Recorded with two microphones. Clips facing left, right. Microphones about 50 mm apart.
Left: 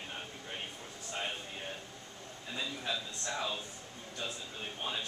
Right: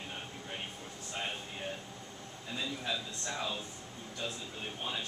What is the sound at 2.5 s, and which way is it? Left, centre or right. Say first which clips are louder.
Speech: right 1 dB; centre.